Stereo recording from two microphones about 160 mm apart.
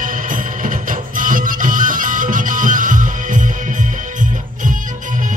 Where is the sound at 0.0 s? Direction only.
55° right (ahead or behind).